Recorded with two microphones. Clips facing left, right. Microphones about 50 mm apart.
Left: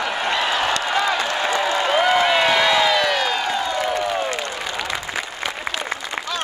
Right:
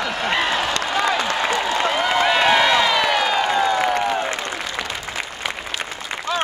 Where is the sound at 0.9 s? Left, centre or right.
Centre.